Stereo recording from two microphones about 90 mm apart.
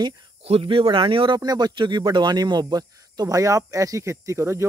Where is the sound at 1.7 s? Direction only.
60° right (ahead or behind); by 4.6 s 30° right (ahead or behind).